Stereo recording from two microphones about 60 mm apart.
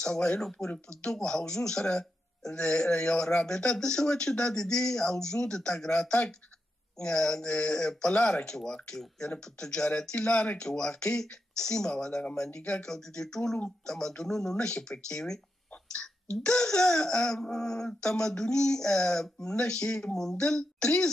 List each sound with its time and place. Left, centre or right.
0.0 s speech: centre
15.7 s a sound: centre
16.4 s speech: centre